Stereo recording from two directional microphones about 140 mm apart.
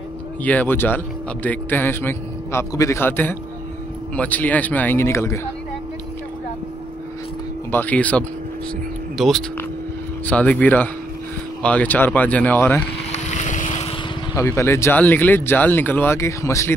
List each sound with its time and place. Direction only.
0.4 s a man's voice: 10° left (ahead or behind)
7.7 s a man's voice: 10° left (ahead or behind)
10.2 s a man's voice: 10° left (ahead or behind)
13.1 s boat: 60° left (ahead or behind)
14.3 s a man's voice: 20° left (ahead or behind)